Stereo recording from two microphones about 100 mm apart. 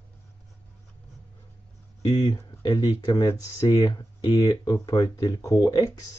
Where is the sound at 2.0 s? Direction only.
45° left (ahead or behind).